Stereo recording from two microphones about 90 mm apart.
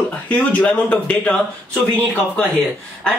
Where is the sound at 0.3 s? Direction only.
15° left (ahead or behind).